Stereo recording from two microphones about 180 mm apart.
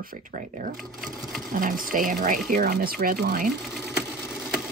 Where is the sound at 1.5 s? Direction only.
50° right (ahead or behind).